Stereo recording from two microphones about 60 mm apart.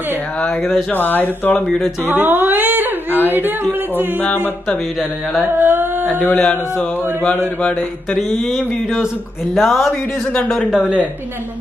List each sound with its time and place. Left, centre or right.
0.5 s speech: left
2.1 s speech: right
5.4 s a sound: right
6.1 s speech: left
6.5 s chant: left
8.2 s speech: centre
10.7 s speech: centre